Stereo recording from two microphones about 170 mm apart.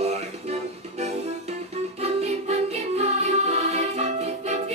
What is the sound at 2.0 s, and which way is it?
Music, 40° right (ahead or behind).